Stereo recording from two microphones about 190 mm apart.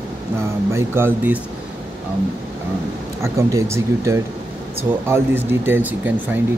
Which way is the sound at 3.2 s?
15° right (ahead or behind).